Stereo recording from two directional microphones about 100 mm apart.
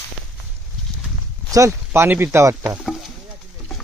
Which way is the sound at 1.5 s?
30° right (ahead or behind).